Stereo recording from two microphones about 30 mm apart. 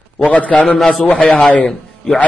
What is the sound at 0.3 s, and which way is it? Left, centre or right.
Speech, left.